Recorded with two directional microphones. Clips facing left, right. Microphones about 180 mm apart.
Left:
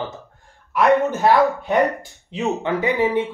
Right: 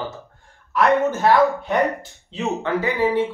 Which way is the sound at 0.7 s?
15° left (ahead or behind).